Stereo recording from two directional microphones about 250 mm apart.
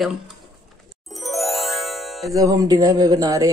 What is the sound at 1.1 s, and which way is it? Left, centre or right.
Music, centre.